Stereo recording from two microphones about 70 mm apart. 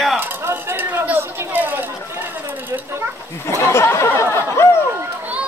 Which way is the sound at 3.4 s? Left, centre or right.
Left.